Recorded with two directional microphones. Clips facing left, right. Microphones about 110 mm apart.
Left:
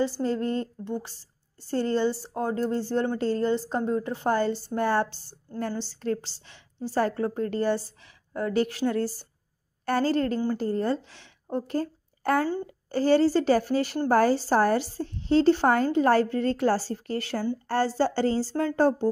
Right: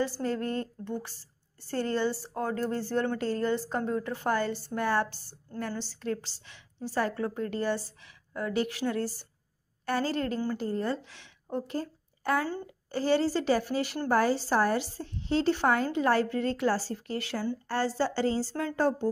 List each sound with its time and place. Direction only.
0.0 s a woman's voice: 25° left (ahead or behind)